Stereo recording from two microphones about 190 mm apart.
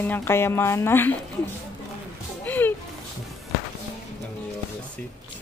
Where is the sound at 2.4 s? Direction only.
10° left (ahead or behind).